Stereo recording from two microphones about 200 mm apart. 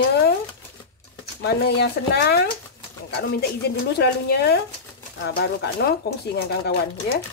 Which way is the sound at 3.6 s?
55° left (ahead or behind).